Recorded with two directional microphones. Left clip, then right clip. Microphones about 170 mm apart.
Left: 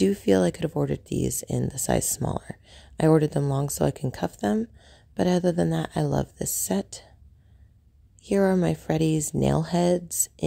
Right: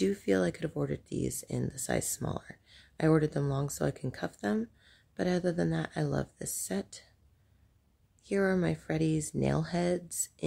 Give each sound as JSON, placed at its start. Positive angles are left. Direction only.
{"t": 0.0, "sound": "speech", "side_deg": 35}
{"t": 8.2, "sound": "speech", "side_deg": 35}